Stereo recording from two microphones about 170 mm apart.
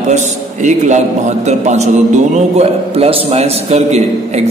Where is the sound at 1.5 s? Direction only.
40° right (ahead or behind).